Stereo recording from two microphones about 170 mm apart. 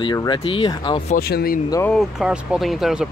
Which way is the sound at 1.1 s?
65° left (ahead or behind).